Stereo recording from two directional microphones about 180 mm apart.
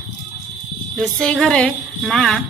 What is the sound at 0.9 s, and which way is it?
Speech, centre (ahead or behind).